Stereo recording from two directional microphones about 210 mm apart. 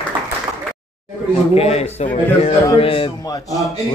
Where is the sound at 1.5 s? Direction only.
30° left (ahead or behind).